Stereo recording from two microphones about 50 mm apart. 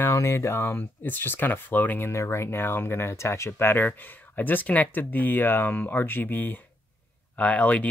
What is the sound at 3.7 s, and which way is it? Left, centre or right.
Speech, left.